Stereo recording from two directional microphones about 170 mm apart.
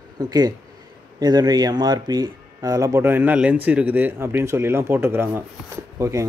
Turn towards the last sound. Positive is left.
turn(degrees=-15)  # may be behind; listen again after turning